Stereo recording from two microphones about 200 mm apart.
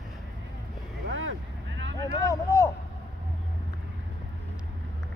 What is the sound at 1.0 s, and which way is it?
Vehicle, 75° right (ahead or behind).